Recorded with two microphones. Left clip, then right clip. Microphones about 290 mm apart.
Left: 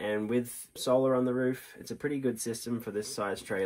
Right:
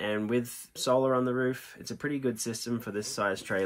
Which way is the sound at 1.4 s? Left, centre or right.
Right.